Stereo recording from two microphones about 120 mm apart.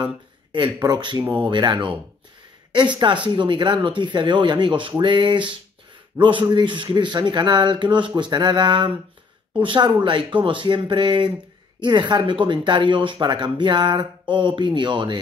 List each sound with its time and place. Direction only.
0.0 s speech: 40° right (ahead or behind)
3.3 s speech: 40° right (ahead or behind)